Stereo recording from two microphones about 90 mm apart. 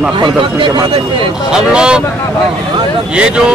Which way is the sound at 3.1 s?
10° right (ahead or behind).